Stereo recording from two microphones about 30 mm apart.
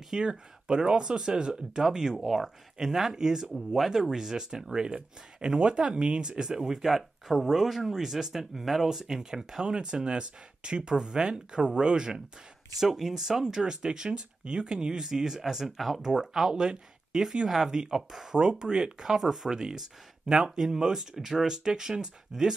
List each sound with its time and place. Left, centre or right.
0.2 s speech: right
2.1 s speech: centre
2.8 s speech: centre
3.5 s speech: centre
3.9 s speech: centre
4.7 s speech: right
6.7 s speech: centre; by 12.2 s right
12.7 s speech: centre
16.0 s speech: right
18.9 s speech: centre
20.2 s speech: right